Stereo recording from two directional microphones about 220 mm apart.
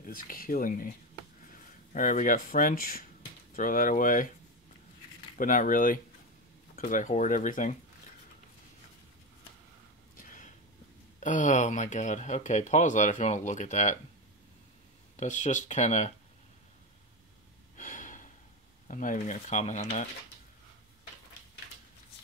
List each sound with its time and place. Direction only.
0.0 s speech: 40° left (ahead or behind)
2.0 s speech: 35° left (ahead or behind)
5.4 s speech: 35° left (ahead or behind)
10.1 s a sound: 35° left (ahead or behind)
11.1 s speech: 35° left (ahead or behind)
15.1 s speech: 35° left (ahead or behind)
17.7 s gasp: 35° left (ahead or behind)
18.9 s speech: 35° left (ahead or behind)